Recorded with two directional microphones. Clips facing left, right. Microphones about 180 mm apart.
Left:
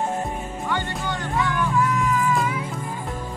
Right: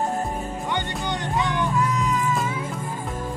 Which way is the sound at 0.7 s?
20° right (ahead or behind).